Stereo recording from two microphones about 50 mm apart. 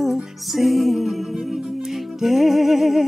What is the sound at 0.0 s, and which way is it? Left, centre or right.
Music, centre.